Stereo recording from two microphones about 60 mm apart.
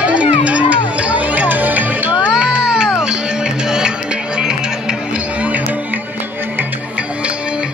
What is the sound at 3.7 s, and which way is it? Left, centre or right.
Music, centre.